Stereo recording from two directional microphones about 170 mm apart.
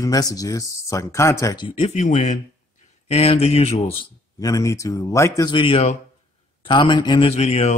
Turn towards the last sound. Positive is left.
turn(degrees=40)  # may be behind; listen again after turning